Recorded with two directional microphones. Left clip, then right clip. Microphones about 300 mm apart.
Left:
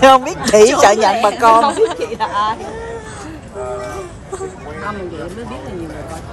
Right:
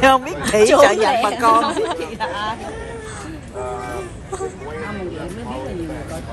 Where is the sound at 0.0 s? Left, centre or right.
Left.